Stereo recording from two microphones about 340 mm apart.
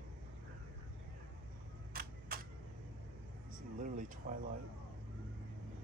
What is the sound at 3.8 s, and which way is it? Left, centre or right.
Air conditioning, right.